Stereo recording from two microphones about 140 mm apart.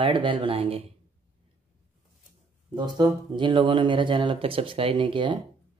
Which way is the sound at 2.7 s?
30° right (ahead or behind).